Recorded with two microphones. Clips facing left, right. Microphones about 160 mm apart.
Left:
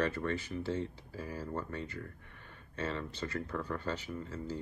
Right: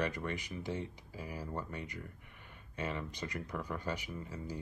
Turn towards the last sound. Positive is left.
turn(degrees=-15)  # may be behind; listen again after turning